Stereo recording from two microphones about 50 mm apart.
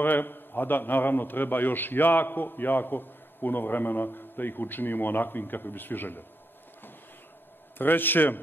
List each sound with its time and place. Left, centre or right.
0.0 s a man's voice: left
7.7 s a man's voice: left